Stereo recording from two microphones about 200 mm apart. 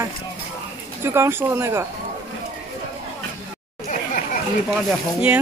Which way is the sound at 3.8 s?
40° left (ahead or behind).